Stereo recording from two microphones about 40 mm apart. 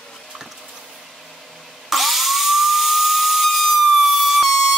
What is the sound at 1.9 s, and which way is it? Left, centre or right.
Steam whistle, centre.